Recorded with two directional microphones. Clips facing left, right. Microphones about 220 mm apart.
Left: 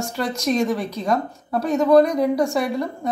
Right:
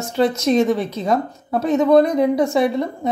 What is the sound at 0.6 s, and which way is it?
Speech, 25° right (ahead or behind).